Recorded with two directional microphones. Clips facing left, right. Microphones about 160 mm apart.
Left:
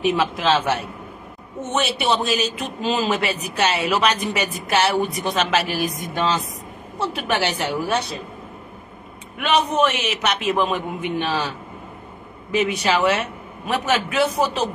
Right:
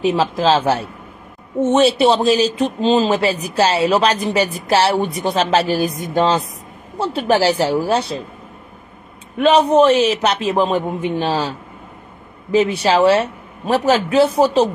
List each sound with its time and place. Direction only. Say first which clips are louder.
0.0 s speech: right 4 dB; 30° right (ahead or behind)
9.4 s speech: right 7 dB; 30° right (ahead or behind)